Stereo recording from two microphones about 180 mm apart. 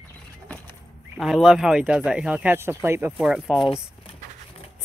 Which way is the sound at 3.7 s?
30° left (ahead or behind).